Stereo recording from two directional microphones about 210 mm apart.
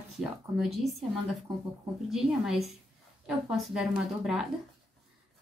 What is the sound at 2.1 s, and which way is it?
Speech, centre (ahead or behind).